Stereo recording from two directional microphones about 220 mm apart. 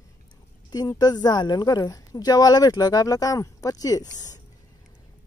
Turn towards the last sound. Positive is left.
turn(degrees=15)  # may be behind; listen again after turning